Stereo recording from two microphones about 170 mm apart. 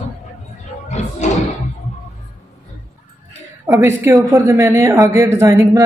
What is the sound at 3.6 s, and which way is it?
A woman's voice, 15° right (ahead or behind).